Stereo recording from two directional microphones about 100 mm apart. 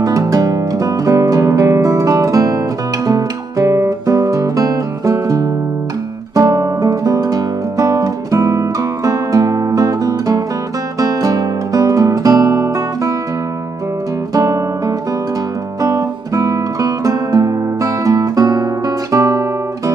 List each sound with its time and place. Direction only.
0.0 s music: 35° right (ahead or behind)
14.3 s music: 35° right (ahead or behind)
19.1 s guitar: 35° right (ahead or behind)